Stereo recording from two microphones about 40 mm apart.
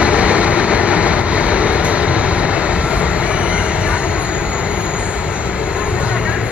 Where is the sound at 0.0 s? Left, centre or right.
Right.